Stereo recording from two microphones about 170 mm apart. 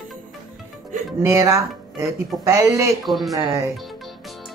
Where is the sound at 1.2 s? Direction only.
20° right (ahead or behind).